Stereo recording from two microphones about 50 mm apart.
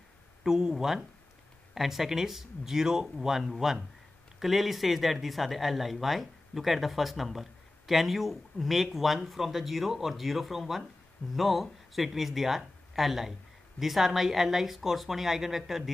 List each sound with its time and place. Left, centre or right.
0.4 s speech: centre